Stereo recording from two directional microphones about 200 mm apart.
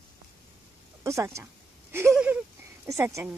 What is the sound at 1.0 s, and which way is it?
Speech, 15° right (ahead or behind).